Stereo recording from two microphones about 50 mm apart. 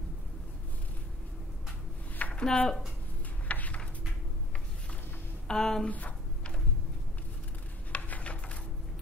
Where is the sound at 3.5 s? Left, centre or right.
Left.